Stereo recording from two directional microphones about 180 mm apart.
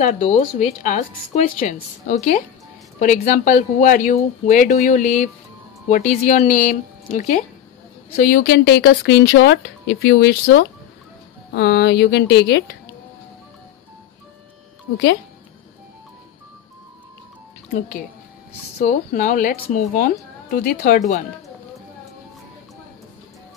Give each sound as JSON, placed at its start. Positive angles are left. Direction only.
{"t": 0.0, "sound": "a woman's voice", "side_deg": 30}
{"t": 8.2, "sound": "speech", "side_deg": 55}
{"t": 18.9, "sound": "speech", "side_deg": 45}